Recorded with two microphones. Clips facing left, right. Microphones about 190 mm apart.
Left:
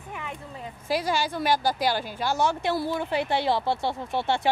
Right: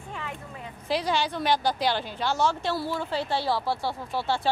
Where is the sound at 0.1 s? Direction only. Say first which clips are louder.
Even; 15° left (ahead or behind).